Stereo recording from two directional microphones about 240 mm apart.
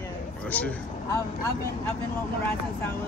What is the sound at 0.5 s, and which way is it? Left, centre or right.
Speech, centre.